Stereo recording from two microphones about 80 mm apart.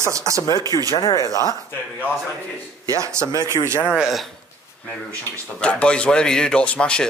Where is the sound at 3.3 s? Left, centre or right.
Left.